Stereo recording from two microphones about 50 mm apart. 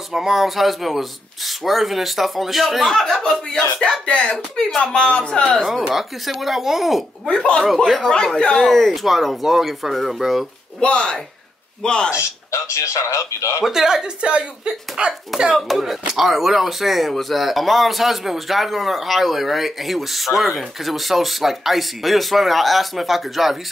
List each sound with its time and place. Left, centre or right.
0.1 s speech: centre; by 4.6 s left
4.6 s speech: centre
5.0 s a man's voice: centre
5.9 s speech: centre
7.2 s a man's voice: left
7.6 s speech: centre
8.4 s speech: centre
8.7 s speech: centre
10.8 s a man's voice: left
12.2 s speech: left
13.7 s speech: centre
15.3 s speech: centre